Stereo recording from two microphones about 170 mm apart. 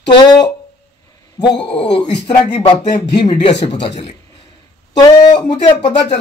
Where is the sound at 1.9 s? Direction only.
35° left (ahead or behind).